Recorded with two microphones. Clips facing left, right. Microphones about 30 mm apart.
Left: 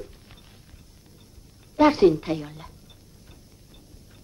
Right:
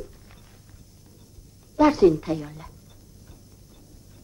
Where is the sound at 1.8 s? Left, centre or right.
Left.